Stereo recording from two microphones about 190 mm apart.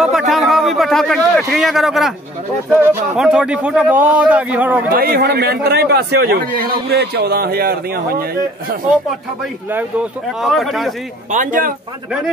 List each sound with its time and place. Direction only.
0.0 s a man's voice: centre (ahead or behind)
4.9 s a man's voice: 55° right (ahead or behind)
10.4 s speech: centre (ahead or behind)
11.3 s speech: 45° right (ahead or behind)